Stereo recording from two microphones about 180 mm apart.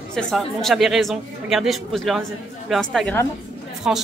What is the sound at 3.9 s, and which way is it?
Speech, 5° right (ahead or behind).